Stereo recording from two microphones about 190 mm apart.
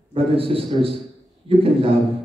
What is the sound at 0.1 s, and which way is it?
A man's voice, 30° right (ahead or behind).